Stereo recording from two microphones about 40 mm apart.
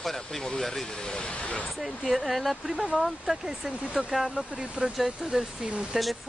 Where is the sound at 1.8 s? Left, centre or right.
Centre.